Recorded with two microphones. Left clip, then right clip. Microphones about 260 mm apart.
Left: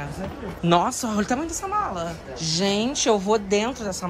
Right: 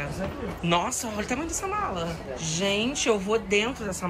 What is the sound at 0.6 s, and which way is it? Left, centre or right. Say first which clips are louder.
Speech: left 5 dB; left.